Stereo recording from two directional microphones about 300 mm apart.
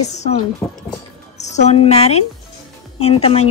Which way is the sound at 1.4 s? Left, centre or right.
Left.